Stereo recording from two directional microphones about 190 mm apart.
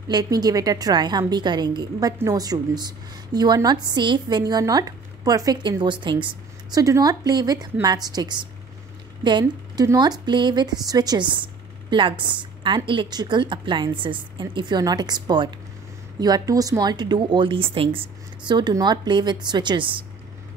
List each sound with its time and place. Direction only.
0.1 s speech: 20° right (ahead or behind)